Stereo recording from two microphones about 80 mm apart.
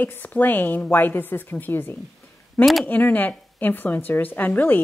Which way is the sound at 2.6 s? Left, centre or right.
Centre.